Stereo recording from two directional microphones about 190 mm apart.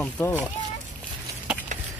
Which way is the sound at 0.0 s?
5° left (ahead or behind).